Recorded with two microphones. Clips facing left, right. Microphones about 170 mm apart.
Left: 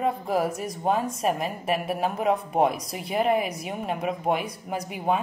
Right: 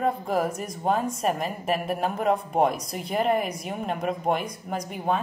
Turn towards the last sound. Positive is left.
turn(degrees=10)  # may be behind; listen again after turning